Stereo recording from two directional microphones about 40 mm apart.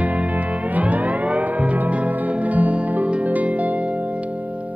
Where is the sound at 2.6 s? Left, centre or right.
Right.